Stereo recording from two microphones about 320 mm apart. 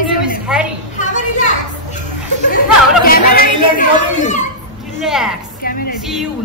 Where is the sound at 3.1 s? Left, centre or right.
Left.